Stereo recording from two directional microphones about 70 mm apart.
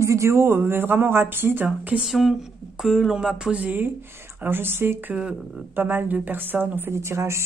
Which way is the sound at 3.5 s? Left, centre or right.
Right.